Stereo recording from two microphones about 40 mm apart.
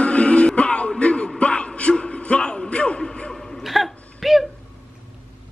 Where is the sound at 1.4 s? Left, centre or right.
Left.